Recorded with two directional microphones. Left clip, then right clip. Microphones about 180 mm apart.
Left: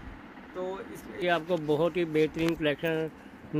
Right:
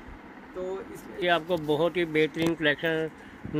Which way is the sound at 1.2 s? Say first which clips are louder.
Right 2 dB; 5° left (ahead or behind).